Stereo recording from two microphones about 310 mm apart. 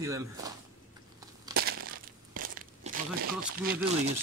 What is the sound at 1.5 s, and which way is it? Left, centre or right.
Crumpling, right.